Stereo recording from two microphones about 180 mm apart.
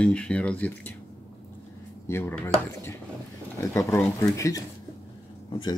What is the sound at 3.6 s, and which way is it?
Speech, 15° left (ahead or behind).